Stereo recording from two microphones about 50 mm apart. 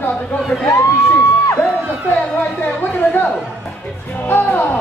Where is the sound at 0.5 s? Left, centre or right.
Centre.